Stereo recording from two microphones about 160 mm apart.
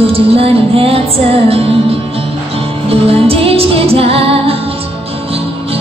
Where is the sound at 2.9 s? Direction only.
35° right (ahead or behind).